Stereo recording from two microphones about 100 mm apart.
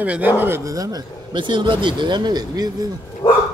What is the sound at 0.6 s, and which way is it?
Speech, 35° right (ahead or behind).